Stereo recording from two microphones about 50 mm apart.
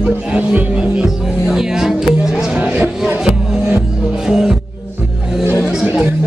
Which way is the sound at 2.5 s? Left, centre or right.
Right.